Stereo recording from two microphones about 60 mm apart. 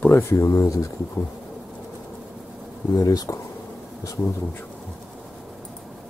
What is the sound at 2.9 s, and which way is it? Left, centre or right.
Speech, left.